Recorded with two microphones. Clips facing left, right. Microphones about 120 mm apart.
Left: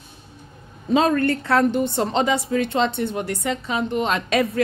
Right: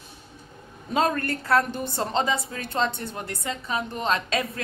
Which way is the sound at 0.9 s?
25° left (ahead or behind).